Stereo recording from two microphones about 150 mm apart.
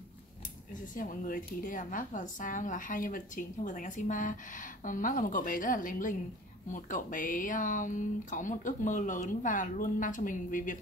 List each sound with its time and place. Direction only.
0.9 s speech: 70° left (ahead or behind)